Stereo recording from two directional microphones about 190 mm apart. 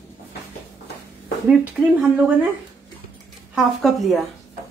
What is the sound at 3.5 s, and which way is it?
Speech, centre (ahead or behind).